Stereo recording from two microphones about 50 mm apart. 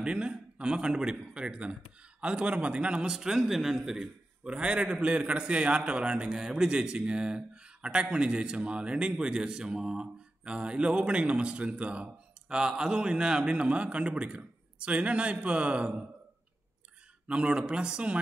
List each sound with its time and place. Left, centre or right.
0.0 s speech: centre
4.5 s speech: right
17.3 s speech: centre